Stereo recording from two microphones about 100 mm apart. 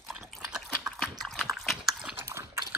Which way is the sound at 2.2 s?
25° right (ahead or behind).